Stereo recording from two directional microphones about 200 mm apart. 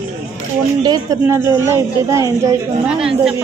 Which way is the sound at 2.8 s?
5° right (ahead or behind).